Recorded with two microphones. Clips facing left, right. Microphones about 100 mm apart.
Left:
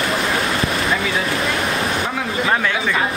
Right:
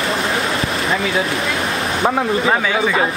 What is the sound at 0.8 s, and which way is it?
Speech, 30° right (ahead or behind).